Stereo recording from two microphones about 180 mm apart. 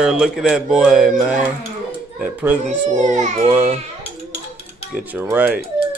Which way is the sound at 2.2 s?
10° right (ahead or behind).